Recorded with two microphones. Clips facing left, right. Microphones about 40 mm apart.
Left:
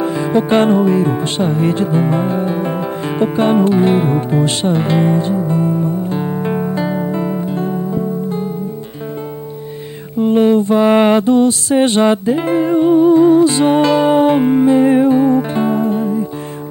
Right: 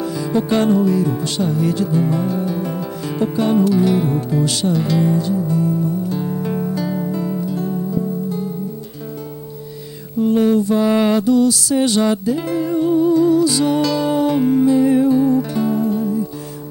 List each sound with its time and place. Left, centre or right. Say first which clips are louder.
0.0 s speech: left 5 dB; left
10.1 s mantra: left 3 dB; left